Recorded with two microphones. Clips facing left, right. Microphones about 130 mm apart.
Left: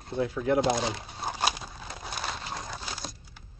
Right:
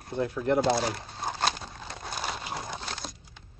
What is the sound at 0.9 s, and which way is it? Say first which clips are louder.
Crumpling: right 1 dB; 5° left (ahead or behind).